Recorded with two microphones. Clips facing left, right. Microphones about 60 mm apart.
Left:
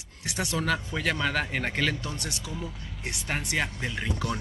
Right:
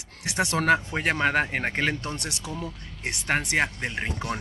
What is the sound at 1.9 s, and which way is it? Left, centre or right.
A man's voice, right.